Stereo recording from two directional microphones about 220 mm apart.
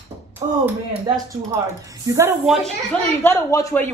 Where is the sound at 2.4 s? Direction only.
Centre (ahead or behind).